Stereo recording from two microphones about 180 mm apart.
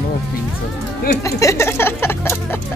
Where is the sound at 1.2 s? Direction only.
15° left (ahead or behind).